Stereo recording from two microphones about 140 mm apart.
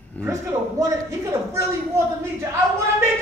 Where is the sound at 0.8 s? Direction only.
20° right (ahead or behind).